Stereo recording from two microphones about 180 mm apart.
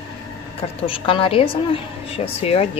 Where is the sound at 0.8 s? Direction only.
30° left (ahead or behind).